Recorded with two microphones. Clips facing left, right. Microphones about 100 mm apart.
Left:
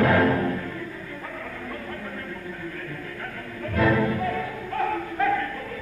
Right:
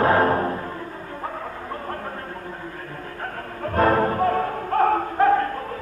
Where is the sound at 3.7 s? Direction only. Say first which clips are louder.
Right 3 dB; 45° right (ahead or behind).